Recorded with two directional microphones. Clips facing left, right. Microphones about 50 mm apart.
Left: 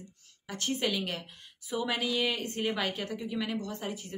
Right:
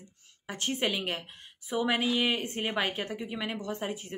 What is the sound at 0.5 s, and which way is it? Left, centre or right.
A woman's voice, right.